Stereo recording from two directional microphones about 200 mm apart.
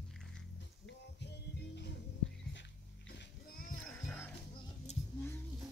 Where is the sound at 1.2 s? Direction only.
55° left (ahead or behind).